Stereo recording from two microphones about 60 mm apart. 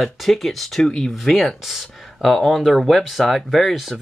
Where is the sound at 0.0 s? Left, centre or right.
Centre.